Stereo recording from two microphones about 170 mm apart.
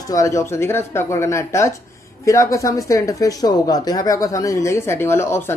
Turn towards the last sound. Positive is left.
turn(degrees=15)  # may be behind; listen again after turning